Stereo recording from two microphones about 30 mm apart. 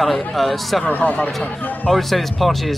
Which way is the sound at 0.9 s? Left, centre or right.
Left.